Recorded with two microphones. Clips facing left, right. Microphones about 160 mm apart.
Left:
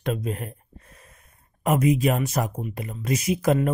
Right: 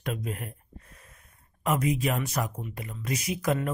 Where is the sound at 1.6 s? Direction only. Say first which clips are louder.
Left 6 dB; 20° left (ahead or behind).